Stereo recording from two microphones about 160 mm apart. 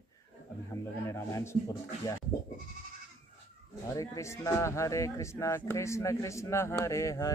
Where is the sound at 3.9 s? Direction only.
20° left (ahead or behind).